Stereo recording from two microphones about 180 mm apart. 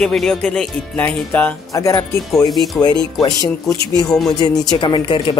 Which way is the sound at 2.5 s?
Centre (ahead or behind).